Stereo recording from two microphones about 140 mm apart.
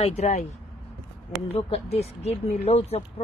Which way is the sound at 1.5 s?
45° left (ahead or behind).